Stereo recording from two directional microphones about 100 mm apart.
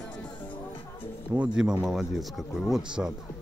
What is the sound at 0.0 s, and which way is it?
Music, 10° left (ahead or behind).